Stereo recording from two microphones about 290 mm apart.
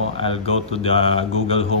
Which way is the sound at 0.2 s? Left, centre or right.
Centre.